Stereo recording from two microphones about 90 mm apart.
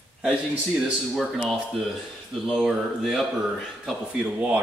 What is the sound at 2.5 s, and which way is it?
Speech, centre (ahead or behind).